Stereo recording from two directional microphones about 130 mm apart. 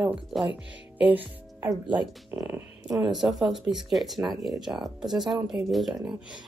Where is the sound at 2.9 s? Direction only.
Centre (ahead or behind).